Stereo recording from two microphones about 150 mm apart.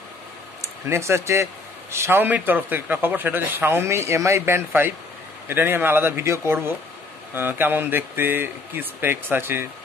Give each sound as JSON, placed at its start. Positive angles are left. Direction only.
{"t": 0.8, "sound": "a man's voice", "side_deg": -20}